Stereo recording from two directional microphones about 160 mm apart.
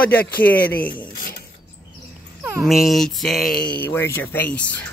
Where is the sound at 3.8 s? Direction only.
15° left (ahead or behind).